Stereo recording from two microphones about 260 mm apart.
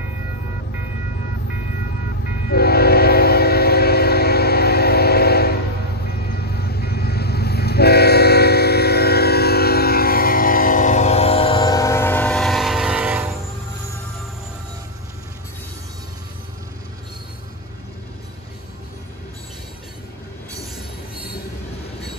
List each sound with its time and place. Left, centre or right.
2.5 s train: left; by 13.3 s centre